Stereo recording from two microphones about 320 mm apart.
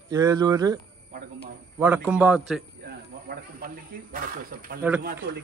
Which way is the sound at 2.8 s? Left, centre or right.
Right.